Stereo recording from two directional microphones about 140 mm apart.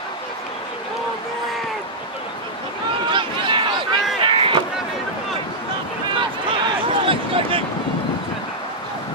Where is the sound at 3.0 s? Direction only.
35° right (ahead or behind).